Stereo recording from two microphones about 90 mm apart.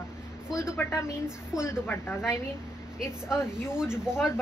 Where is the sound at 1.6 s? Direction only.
25° left (ahead or behind).